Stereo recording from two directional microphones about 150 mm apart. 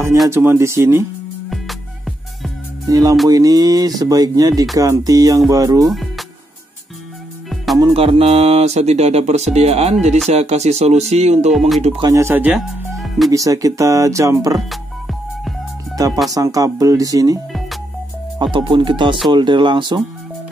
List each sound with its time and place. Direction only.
0.3 s speech: 15° right (ahead or behind)
1.5 s music: centre (ahead or behind)
2.9 s speech: 25° right (ahead or behind)
5.9 s music: centre (ahead or behind)
7.4 s music: centre (ahead or behind)
7.9 s speech: 40° right (ahead or behind)
12.0 s speech: 20° right (ahead or behind); by 13.3 s centre (ahead or behind)
13.3 s speech: 20° right (ahead or behind)
14.7 s music: centre (ahead or behind)
16.3 s speech: 25° right (ahead or behind)
17.5 s music: centre (ahead or behind)
18.4 s speech: 35° right (ahead or behind)